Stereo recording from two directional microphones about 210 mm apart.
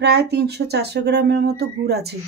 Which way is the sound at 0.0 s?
50° right (ahead or behind).